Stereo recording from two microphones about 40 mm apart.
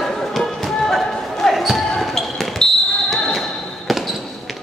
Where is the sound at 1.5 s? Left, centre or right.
Centre.